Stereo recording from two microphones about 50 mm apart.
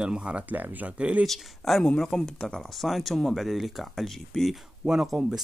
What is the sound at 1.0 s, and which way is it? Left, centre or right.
Speech, right.